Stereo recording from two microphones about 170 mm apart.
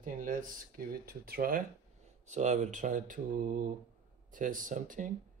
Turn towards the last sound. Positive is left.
turn(degrees=-50)  # may be behind; listen again after turning